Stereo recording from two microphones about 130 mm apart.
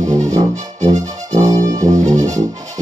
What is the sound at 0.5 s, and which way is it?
Music, 70° right (ahead or behind).